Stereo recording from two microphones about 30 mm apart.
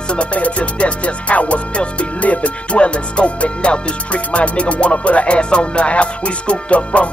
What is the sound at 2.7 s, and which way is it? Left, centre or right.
Music, left.